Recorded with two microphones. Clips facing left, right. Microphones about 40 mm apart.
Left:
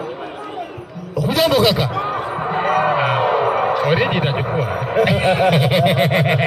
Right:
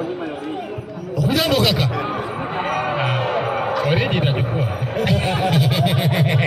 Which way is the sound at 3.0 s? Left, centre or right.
Centre.